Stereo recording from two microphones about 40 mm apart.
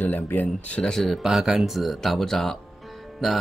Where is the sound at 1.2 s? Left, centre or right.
Centre.